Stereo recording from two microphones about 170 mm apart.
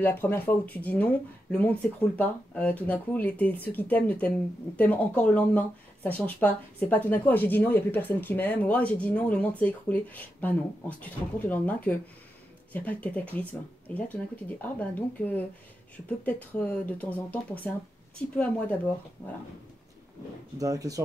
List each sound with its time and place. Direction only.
0.0 s speech: 10° left (ahead or behind)
20.5 s speech: 20° right (ahead or behind)